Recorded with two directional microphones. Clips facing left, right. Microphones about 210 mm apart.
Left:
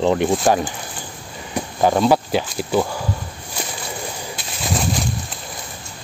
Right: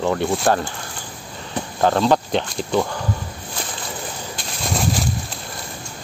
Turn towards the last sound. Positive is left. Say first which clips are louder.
# even
turn(degrees=0)  # may be behind; listen again after turning